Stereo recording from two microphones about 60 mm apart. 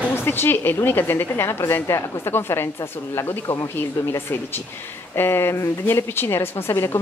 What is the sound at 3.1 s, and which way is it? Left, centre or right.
Speech, left.